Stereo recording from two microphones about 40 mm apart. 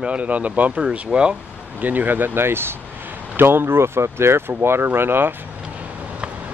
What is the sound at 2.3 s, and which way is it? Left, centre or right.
Speech, right.